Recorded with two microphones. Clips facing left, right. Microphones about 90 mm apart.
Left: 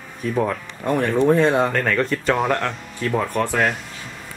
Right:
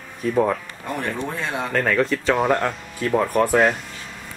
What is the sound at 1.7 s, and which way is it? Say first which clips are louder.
Speech: right 1 dB; 5° right (ahead or behind).